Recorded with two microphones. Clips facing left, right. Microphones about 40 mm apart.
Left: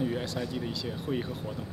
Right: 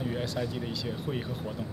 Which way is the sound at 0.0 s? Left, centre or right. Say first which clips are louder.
Left 1 dB; centre.